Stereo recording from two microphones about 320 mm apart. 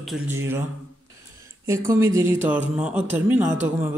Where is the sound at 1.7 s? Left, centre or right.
Centre.